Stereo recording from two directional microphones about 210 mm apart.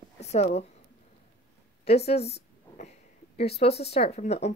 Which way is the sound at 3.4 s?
30° left (ahead or behind).